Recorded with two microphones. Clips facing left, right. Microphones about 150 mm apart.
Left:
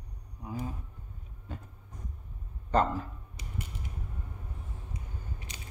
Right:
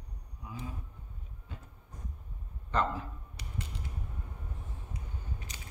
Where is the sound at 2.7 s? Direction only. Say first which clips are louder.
Left 5 dB; 40° left (ahead or behind).